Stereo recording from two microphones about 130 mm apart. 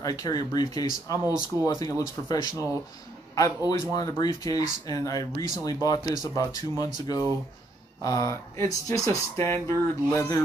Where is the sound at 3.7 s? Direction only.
25° left (ahead or behind).